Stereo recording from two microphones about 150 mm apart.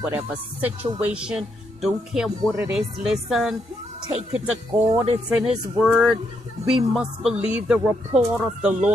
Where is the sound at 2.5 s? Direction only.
15° right (ahead or behind).